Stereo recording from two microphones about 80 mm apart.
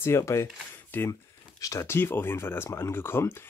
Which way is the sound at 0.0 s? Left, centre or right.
Left.